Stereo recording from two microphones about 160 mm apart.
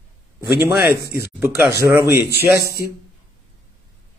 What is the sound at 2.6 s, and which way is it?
Speech, 75° left (ahead or behind).